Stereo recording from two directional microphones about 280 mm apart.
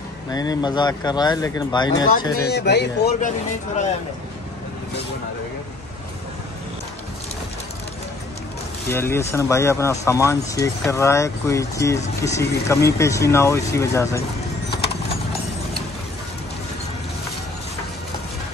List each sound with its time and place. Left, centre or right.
0.3 s speech: centre
2.4 s speech: left
8.8 s speech: centre